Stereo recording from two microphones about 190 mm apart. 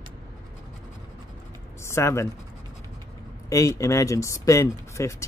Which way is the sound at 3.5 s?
15° left (ahead or behind).